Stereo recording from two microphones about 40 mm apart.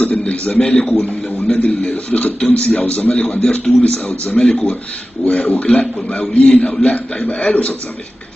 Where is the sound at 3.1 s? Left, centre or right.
Left.